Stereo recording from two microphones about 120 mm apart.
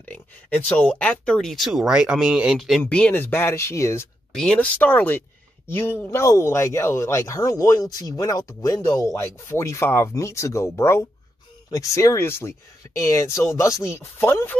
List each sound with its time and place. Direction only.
0.7 s speech: 10° left (ahead or behind)
2.8 s speech: 15° left (ahead or behind)
4.4 s speech: 10° left (ahead or behind)